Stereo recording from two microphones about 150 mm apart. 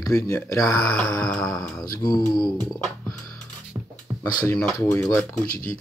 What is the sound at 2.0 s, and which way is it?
Speech, 25° left (ahead or behind).